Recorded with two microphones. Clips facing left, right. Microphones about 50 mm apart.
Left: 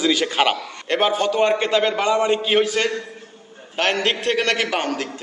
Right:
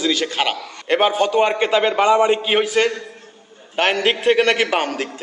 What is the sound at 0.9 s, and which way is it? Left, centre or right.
A man's voice, centre.